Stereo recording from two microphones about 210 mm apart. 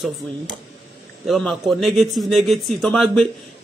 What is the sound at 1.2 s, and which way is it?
A man's voice, centre (ahead or behind).